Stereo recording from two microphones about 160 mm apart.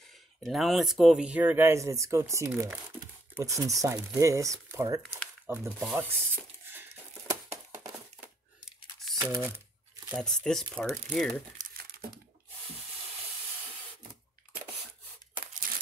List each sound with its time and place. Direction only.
0.4 s speech: centre (ahead or behind)
5.9 s a sound: 15° right (ahead or behind)
9.1 s crumpling: 20° right (ahead or behind)
10.1 s speech: 5° left (ahead or behind)